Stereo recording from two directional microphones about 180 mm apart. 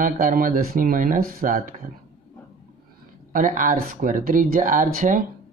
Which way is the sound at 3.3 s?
50° right (ahead or behind).